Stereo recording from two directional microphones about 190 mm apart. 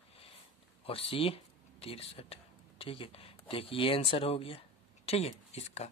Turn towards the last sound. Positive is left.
turn(degrees=35)  # may be behind; listen again after turning